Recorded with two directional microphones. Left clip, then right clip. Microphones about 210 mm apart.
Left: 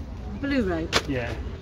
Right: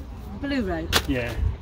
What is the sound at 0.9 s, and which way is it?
Speech, 45° right (ahead or behind).